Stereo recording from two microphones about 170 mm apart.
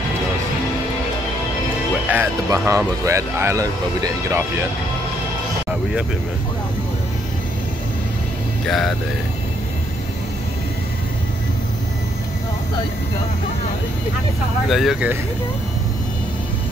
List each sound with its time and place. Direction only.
2.0 s speech: 10° right (ahead or behind)
8.6 s speech: centre (ahead or behind)
14.7 s speech: centre (ahead or behind)